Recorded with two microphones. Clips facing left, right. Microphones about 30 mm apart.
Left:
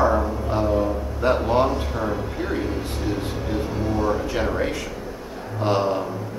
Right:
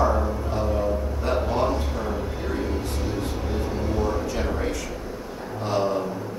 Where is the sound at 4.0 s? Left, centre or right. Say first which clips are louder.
Left 5 dB; left.